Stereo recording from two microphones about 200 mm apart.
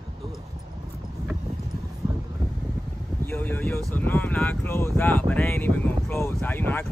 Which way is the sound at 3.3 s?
10° left (ahead or behind).